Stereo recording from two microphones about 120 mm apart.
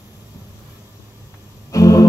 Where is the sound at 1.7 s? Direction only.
30° left (ahead or behind).